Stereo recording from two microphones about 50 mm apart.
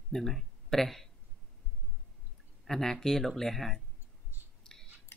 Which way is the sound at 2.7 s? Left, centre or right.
Centre.